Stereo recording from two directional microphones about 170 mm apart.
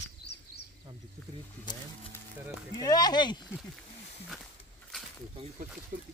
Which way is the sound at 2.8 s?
25° left (ahead or behind).